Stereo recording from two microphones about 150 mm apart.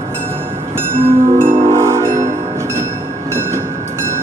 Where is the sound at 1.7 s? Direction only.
20° right (ahead or behind).